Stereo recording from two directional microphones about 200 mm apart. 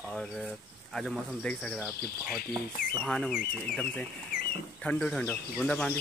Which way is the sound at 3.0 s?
5° left (ahead or behind).